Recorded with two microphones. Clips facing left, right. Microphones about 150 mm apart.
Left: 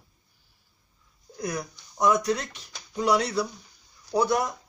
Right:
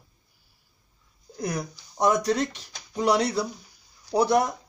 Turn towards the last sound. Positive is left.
turn(degrees=-30)  # may be behind; listen again after turning